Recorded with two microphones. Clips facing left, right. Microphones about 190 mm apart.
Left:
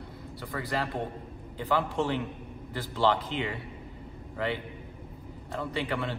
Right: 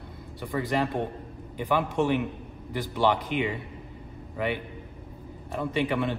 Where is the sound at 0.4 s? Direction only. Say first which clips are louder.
Right 5 dB; 25° right (ahead or behind).